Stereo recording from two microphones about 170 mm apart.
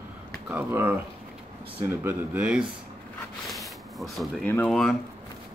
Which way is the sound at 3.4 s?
Centre (ahead or behind).